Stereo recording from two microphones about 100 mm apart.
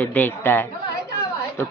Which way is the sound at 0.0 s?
20° left (ahead or behind).